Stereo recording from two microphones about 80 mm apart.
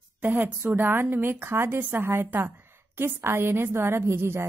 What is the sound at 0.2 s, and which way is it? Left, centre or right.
A woman's voice, right.